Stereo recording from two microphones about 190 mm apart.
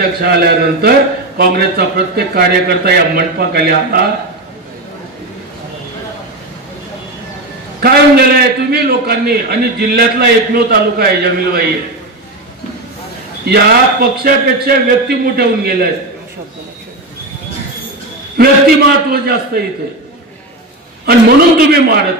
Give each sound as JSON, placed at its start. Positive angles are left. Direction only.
{"t": 0.2, "sound": "a man's voice", "side_deg": -55}
{"t": 7.8, "sound": "a man's voice", "side_deg": -55}
{"t": 13.5, "sound": "speech", "side_deg": -55}
{"t": 18.4, "sound": "speech", "side_deg": -50}
{"t": 21.0, "sound": "speech", "side_deg": -55}